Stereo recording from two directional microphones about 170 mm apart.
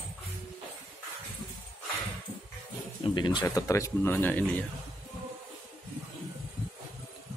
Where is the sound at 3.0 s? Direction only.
25° left (ahead or behind); by 4.7 s 10° left (ahead or behind).